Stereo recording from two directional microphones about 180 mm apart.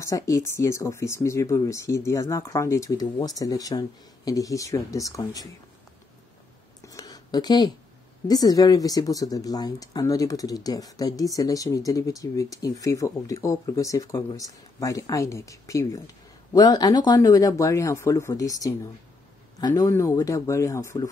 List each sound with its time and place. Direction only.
0.0 s speech: 15° left (ahead or behind)
6.9 s a sound: 20° left (ahead or behind)
8.3 s speech: 20° left (ahead or behind)